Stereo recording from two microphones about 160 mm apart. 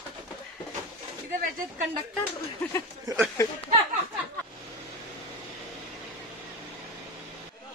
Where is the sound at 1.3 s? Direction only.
60° right (ahead or behind).